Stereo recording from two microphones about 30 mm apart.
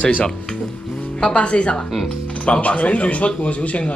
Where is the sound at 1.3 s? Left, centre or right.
Left.